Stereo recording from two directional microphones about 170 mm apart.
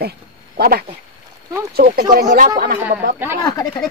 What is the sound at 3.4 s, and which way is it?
Speech, 20° left (ahead or behind).